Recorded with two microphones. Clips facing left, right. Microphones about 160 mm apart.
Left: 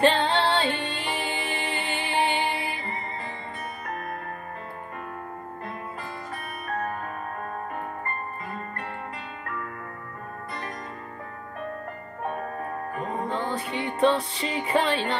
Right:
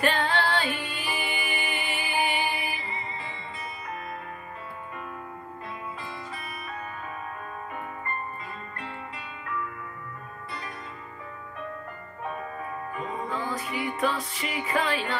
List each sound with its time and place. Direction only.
0.0 s music: 30° left (ahead or behind)
2.8 s music: 50° left (ahead or behind)
6.3 s music: 50° left (ahead or behind)
12.2 s music: 45° left (ahead or behind)
13.3 s music: 30° left (ahead or behind)